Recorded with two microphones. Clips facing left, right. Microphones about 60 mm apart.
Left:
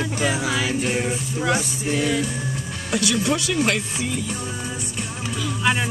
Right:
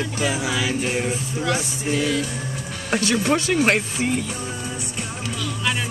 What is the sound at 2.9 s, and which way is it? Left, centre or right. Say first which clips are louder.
Speech: right 2 dB; right.